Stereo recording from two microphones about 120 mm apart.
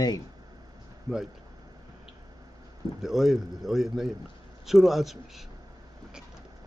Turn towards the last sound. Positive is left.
turn(degrees=0)  # may be behind; listen again after turning